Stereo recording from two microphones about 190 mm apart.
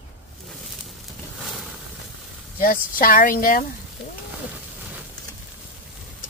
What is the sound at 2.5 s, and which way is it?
Speech, 45° left (ahead or behind).